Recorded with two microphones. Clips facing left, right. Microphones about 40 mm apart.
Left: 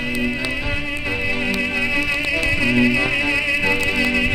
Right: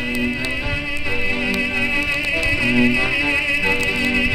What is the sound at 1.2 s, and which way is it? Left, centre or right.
Music, right.